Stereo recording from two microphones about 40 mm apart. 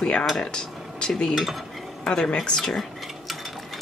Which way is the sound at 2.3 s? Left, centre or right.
Centre.